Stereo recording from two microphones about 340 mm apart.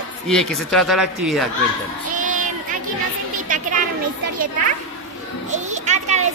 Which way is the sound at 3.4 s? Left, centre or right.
Right.